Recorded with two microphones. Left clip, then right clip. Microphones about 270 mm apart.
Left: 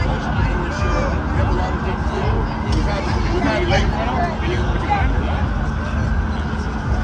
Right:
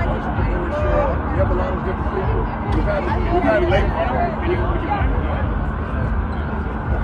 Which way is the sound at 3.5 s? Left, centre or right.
Centre.